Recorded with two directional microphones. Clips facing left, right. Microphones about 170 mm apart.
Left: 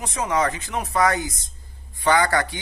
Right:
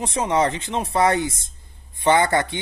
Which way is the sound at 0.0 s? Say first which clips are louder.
Right 2 dB; 30° right (ahead or behind).